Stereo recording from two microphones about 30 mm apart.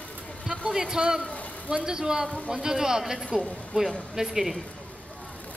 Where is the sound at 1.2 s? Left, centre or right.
Left.